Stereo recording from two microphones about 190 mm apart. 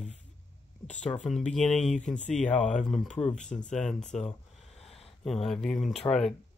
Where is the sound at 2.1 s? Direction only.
40° left (ahead or behind).